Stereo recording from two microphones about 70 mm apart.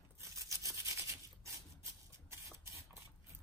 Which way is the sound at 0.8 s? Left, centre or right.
Right.